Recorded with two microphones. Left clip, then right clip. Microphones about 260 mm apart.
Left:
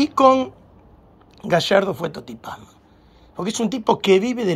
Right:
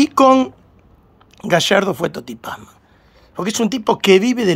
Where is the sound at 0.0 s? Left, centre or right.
Centre.